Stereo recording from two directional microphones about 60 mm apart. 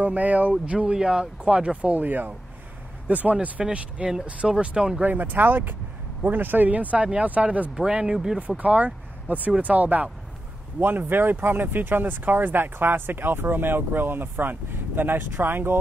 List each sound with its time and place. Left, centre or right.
0.0 s speech: right
3.6 s speech: centre
5.0 s speech: right
7.7 s speech: centre
8.4 s speech: right